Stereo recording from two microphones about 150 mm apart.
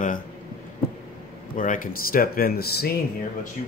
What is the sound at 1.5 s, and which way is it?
Speech, 60° left (ahead or behind).